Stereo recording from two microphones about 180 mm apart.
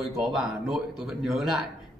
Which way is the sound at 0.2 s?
Centre (ahead or behind).